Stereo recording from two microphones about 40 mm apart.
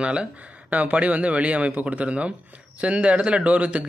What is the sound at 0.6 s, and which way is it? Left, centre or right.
Speech, right.